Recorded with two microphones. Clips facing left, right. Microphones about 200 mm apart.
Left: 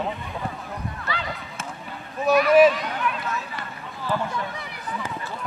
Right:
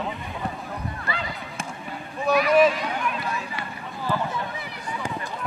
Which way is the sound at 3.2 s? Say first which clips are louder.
Even; 15° right (ahead or behind).